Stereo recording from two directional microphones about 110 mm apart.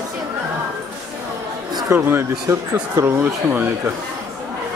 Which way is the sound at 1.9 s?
20° right (ahead or behind).